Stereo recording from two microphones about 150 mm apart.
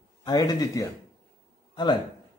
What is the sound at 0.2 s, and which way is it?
Speech, 25° left (ahead or behind).